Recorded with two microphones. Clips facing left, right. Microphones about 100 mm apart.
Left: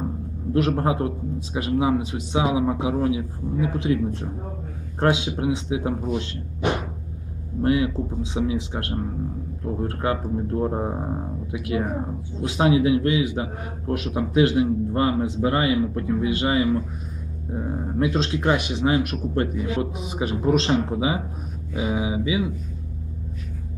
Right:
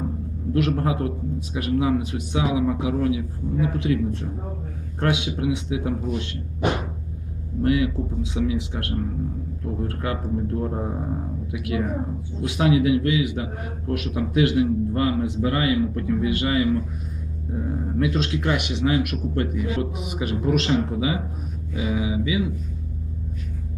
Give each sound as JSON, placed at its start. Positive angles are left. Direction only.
{"t": 0.5, "sound": "a man's voice", "side_deg": 30}
{"t": 7.6, "sound": "a man's voice", "side_deg": 30}